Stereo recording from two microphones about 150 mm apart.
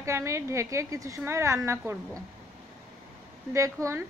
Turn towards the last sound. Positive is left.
turn(degrees=-20)  # may be behind; listen again after turning